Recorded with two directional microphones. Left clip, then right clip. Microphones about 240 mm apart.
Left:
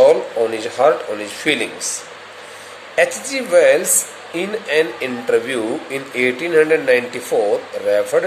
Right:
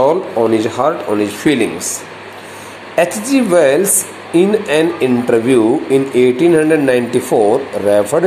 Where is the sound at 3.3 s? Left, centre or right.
Centre.